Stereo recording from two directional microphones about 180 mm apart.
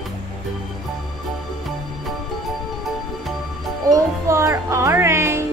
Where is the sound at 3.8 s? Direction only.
15° right (ahead or behind).